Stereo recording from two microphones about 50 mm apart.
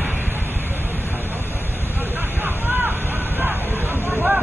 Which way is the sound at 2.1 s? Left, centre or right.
Right.